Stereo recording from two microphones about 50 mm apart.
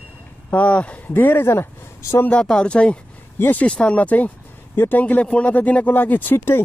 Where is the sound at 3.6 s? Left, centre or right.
Left.